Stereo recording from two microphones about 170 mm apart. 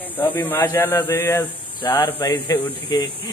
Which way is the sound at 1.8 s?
25° left (ahead or behind).